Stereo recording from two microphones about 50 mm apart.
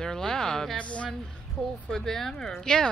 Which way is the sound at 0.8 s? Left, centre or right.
Left.